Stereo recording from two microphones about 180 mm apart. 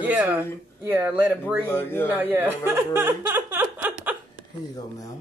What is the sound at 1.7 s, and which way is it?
Speech, 10° left (ahead or behind).